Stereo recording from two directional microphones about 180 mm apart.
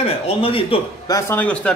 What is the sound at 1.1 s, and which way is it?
Cutlery, 15° left (ahead or behind).